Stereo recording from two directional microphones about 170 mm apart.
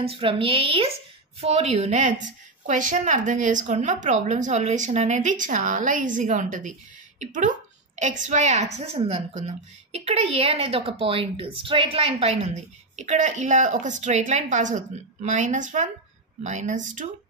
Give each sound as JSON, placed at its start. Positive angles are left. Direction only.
{"t": 0.0, "sound": "a woman's voice", "side_deg": -35}